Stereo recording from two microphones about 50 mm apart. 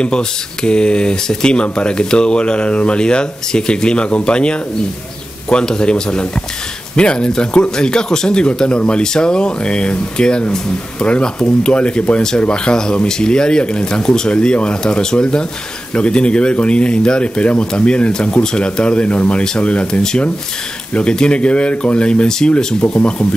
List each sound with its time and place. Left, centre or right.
0.0 s speech: centre